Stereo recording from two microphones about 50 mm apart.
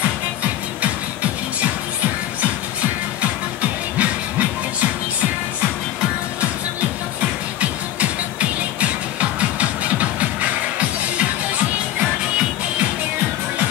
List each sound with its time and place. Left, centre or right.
4.0 s music: right
7.6 s music: right
12.0 s music: centre